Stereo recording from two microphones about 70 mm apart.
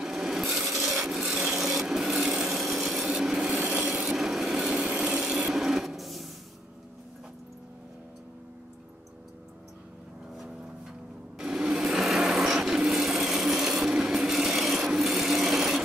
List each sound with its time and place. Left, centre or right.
0.0 s wood: centre
3.6 s wood: centre
4.1 s wood: centre
11.3 s sewing machine: centre